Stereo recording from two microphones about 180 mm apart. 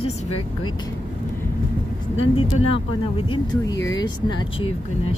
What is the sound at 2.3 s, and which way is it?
Speech, 30° left (ahead or behind).